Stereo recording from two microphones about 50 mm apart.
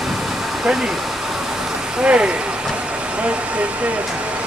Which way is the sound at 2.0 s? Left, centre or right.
Right.